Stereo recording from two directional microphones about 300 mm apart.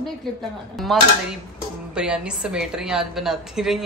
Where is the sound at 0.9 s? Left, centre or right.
Centre.